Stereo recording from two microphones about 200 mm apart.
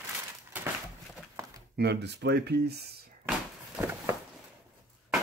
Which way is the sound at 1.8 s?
55° right (ahead or behind).